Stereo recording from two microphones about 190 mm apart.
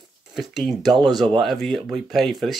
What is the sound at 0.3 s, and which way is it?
Speech, centre (ahead or behind).